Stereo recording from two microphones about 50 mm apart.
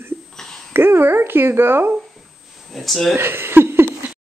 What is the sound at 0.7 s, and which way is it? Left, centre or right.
Speech, right.